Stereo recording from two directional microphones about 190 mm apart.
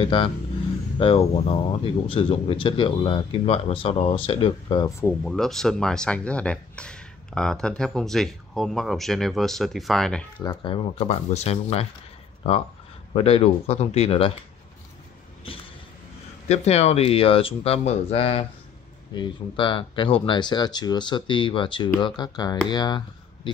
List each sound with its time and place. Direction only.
0.0 s speech: 30° left (ahead or behind)
5.0 s speech: centre (ahead or behind)
10.4 s speech: 25° left (ahead or behind)
16.4 s speech: 35° left (ahead or behind)